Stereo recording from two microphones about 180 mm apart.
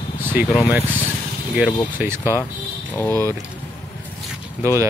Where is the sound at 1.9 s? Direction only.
10° right (ahead or behind).